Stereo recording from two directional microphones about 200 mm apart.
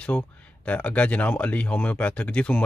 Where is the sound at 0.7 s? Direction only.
5° left (ahead or behind).